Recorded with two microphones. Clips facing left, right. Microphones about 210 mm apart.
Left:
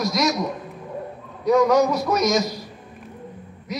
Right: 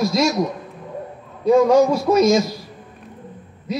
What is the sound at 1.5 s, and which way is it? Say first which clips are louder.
Speech: right 3 dB; 30° right (ahead or behind).